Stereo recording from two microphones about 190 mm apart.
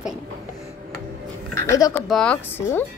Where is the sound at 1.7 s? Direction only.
15° left (ahead or behind).